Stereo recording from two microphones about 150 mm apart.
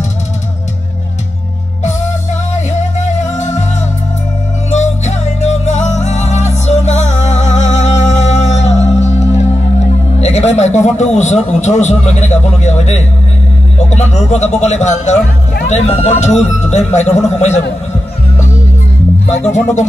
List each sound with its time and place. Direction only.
2.5 s music: 50° left (ahead or behind)
4.6 s music: 50° left (ahead or behind)
10.2 s a man's voice: 45° left (ahead or behind)